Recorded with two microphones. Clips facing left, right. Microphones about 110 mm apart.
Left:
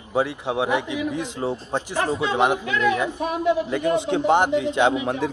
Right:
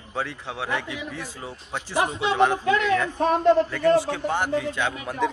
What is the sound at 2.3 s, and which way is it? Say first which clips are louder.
A man's voice: right 3 dB; 15° left (ahead or behind).